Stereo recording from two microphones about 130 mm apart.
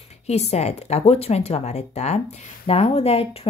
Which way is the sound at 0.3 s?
55° left (ahead or behind).